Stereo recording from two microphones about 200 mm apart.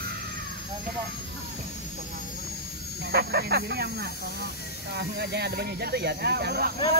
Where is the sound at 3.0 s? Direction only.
55° right (ahead or behind).